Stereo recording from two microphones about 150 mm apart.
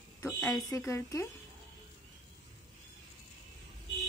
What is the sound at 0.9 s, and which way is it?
Speech, 20° left (ahead or behind).